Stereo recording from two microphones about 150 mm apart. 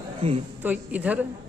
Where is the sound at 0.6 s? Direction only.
10° right (ahead or behind).